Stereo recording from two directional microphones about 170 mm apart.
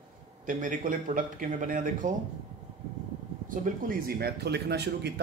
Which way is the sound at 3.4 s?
60° right (ahead or behind).